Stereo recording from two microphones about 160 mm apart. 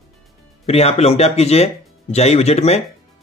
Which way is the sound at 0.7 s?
40° left (ahead or behind).